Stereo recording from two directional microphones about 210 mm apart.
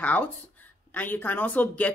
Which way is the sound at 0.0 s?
5° left (ahead or behind).